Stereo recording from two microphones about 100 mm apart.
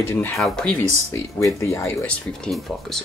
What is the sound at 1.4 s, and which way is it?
Speech, 25° left (ahead or behind).